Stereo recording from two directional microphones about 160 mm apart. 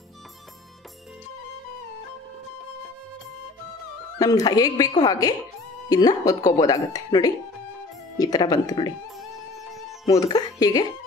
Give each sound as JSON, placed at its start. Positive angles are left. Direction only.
{"t": 4.2, "sound": "speech", "side_deg": 25}
{"t": 9.7, "sound": "music", "side_deg": 0}
{"t": 10.2, "sound": "speech", "side_deg": 25}